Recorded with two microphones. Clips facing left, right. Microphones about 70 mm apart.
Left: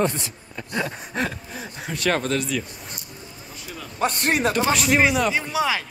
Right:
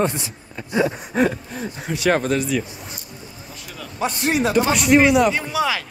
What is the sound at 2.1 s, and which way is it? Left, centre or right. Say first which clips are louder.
Speech: right 4 dB; centre.